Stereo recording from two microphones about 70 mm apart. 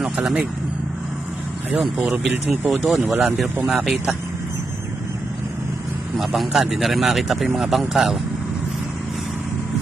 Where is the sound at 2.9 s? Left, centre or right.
Centre.